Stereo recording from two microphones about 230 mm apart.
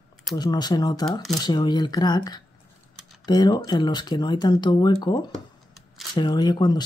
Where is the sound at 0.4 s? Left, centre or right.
Centre.